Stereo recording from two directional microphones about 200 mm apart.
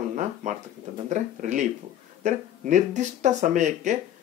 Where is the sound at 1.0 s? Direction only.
40° right (ahead or behind).